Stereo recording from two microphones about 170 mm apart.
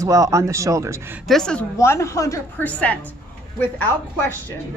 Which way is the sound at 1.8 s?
15° left (ahead or behind).